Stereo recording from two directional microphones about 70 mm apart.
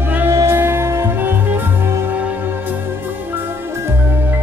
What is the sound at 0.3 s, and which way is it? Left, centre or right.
Music, right.